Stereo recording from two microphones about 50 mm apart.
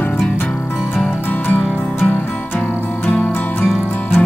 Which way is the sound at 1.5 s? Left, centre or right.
Centre.